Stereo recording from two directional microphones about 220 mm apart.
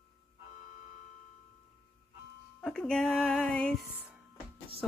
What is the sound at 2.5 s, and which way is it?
A woman's voice, 5° left (ahead or behind).